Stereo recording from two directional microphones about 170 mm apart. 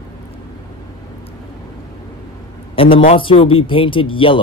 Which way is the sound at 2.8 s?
30° left (ahead or behind).